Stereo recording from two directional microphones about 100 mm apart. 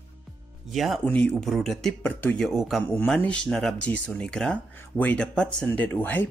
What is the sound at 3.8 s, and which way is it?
Speech, 15° left (ahead or behind).